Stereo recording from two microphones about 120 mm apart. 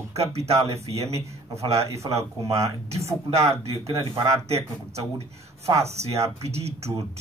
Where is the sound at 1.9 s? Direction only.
25° right (ahead or behind).